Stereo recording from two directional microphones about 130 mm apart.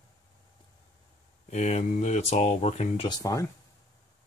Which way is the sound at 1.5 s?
55° left (ahead or behind).